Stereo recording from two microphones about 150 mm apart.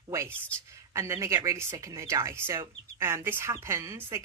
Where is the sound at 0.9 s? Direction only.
20° right (ahead or behind).